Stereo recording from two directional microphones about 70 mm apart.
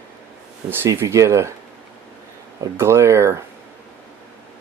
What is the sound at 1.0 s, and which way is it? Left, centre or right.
Speech, right.